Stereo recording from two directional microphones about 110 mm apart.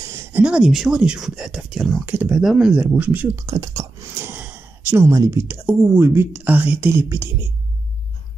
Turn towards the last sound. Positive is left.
turn(degrees=-25)  # may be behind; listen again after turning